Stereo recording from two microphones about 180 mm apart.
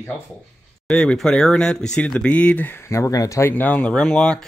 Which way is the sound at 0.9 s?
5° left (ahead or behind).